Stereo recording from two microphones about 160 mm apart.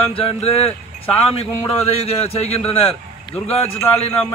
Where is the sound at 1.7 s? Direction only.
40° left (ahead or behind).